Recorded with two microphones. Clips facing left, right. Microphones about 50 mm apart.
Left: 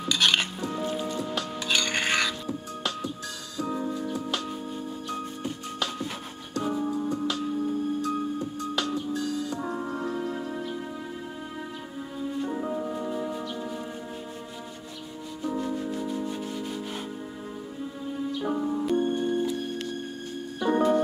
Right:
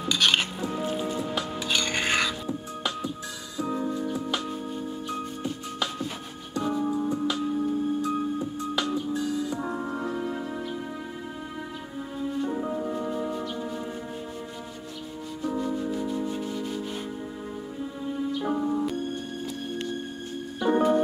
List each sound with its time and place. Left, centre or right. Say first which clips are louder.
0.0 s music: even; centre
6.8 s music: right 2 dB; centre
12.2 s music: right 1 dB; centre
15.5 s music: right 2 dB; centre
18.1 s music: right 1 dB; centre
18.9 s music: left 7 dB; left
20.6 s music: right 1 dB; centre